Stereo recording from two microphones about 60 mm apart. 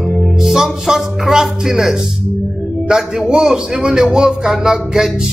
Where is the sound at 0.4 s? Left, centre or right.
Centre.